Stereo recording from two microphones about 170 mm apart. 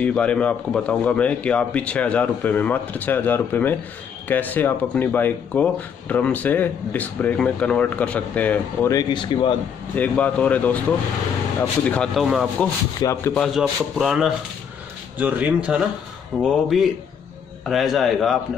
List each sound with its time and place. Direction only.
0.0 s speech: 5° left (ahead or behind)
8.9 s speech: 25° left (ahead or behind)
9.9 s a man's voice: 10° left (ahead or behind)
13.0 s speech: 15° left (ahead or behind)
13.3 s a man's voice: centre (ahead or behind)